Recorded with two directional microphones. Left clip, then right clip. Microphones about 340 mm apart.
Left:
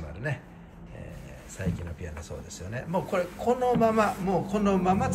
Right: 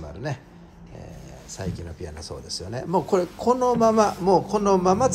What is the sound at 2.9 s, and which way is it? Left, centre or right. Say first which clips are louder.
Speech: right 6 dB; centre.